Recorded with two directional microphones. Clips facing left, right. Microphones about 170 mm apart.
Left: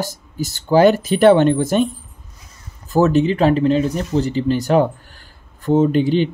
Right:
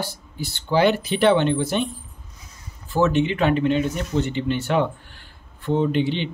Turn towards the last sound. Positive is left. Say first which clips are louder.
# left 6 dB
turn(degrees=45)  # may be behind; listen again after turning